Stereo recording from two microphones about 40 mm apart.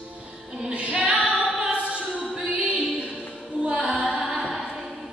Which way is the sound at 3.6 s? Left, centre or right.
Right.